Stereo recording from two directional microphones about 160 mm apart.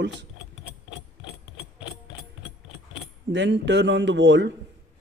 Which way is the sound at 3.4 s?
90° right.